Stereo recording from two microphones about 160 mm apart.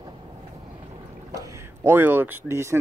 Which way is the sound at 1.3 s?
20° right (ahead or behind).